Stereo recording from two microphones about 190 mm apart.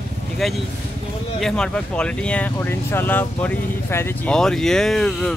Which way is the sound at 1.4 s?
5° left (ahead or behind).